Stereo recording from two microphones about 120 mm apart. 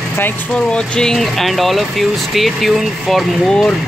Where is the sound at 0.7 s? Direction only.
5° left (ahead or behind).